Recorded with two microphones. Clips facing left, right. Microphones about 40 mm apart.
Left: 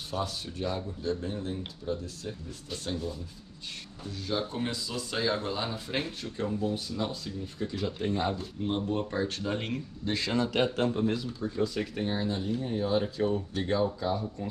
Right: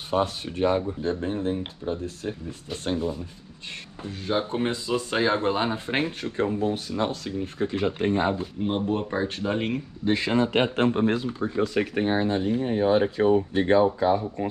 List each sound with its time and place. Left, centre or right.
0.1 s speech: right